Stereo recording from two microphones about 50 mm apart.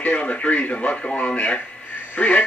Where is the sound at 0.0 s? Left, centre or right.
Left.